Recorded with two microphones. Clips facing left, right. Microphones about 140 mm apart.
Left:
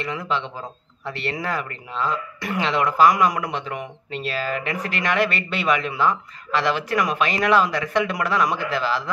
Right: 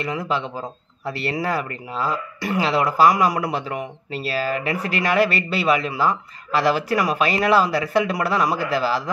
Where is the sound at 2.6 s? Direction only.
35° right (ahead or behind).